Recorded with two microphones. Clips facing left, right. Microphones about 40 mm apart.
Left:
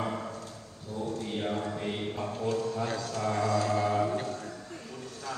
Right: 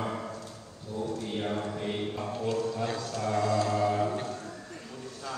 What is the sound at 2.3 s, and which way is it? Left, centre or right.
Music, right.